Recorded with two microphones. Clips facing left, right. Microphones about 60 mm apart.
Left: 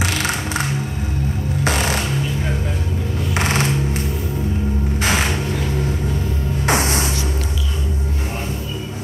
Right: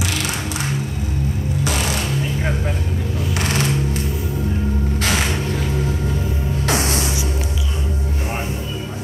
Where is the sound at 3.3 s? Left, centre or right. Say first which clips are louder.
Left 2 dB; left.